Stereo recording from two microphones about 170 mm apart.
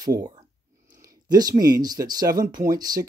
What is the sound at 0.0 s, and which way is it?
Speech, 20° right (ahead or behind).